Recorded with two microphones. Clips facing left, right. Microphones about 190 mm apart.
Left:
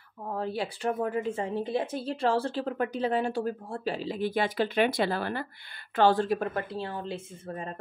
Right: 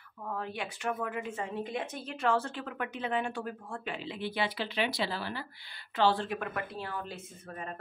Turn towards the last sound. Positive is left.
turn(degrees=30)  # may be behind; listen again after turning